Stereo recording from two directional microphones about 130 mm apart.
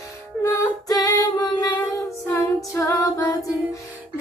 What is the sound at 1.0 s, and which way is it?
Music, 30° left (ahead or behind).